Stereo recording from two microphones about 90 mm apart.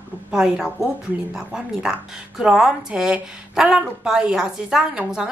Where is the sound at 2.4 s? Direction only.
5° right (ahead or behind).